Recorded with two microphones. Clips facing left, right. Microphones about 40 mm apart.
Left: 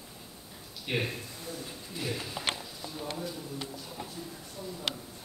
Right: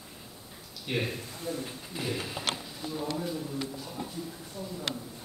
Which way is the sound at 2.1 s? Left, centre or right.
Centre.